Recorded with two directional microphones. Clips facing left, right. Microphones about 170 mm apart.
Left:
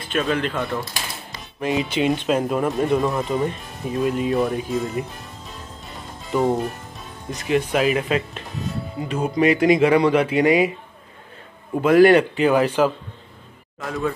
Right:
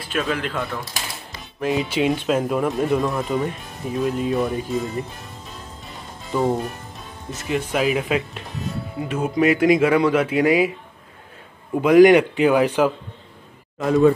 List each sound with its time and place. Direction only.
0.0 s speech: 5° right (ahead or behind)
6.3 s speech: centre (ahead or behind)
11.7 s a man's voice: 15° right (ahead or behind)
13.7 s speech: 25° right (ahead or behind)